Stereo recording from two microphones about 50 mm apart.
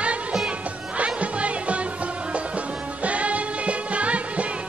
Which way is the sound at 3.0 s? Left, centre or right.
Right.